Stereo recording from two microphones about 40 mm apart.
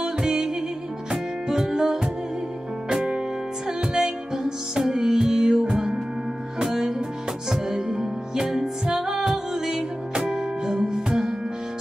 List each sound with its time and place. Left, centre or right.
0.0 s music: centre